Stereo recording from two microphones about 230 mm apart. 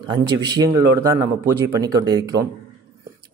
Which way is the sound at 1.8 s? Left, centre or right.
Centre.